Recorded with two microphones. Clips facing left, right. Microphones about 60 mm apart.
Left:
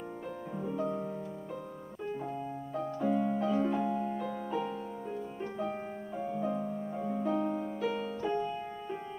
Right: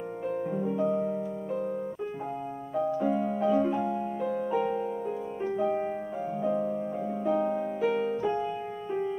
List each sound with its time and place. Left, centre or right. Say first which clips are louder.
0.8 s music: right 8 dB; centre
2.9 s piano: right 1 dB; centre
4.6 s music: right 7 dB; right
5.4 s music: right 10 dB; centre
8.2 s music: right 4 dB; centre